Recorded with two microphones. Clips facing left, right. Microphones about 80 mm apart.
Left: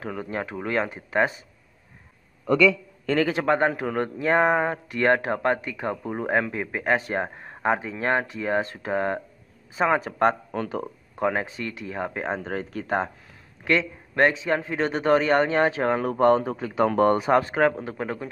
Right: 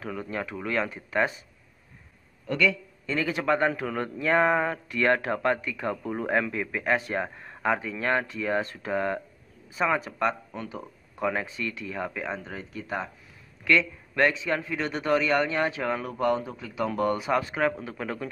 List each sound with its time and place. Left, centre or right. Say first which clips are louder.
0.0 s a man's voice: left 2 dB; left
0.8 s speech: left 3 dB; left
3.3 s a man's voice: left 3 dB; left
10.1 s speech: left 6 dB; left
11.1 s a man's voice: left 3 dB; left
12.4 s speech: left 7 dB; left
13.7 s a man's voice: even; left